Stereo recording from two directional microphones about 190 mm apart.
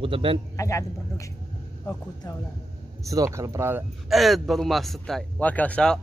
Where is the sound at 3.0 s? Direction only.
15° right (ahead or behind).